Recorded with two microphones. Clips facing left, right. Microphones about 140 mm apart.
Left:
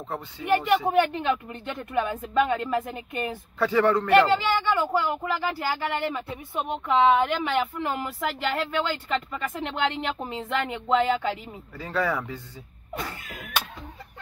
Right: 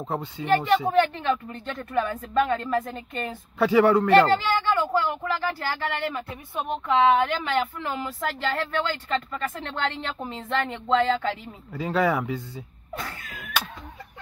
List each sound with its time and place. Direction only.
0.0 s speech: 15° right (ahead or behind)
0.7 s speech: 10° left (ahead or behind)
3.5 s speech: 15° right (ahead or behind)
4.1 s speech: 15° left (ahead or behind)
11.7 s speech: 15° right (ahead or behind)
12.9 s cat: 20° left (ahead or behind)